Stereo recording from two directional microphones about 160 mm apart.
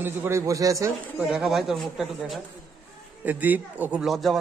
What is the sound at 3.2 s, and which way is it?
Speech, 10° right (ahead or behind).